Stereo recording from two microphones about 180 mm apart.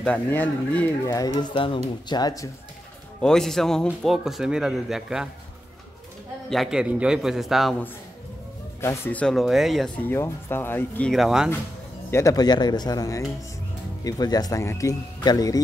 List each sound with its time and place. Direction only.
0.0 s speech: 10° left (ahead or behind)
1.1 s speech: 20° left (ahead or behind)
3.2 s speech: 5° left (ahead or behind)
6.5 s speech: centre (ahead or behind)
8.8 s speech: 15° left (ahead or behind)
10.0 s speech: 15° left (ahead or behind); by 11.5 s 5° right (ahead or behind)
12.1 s speech: 15° left (ahead or behind)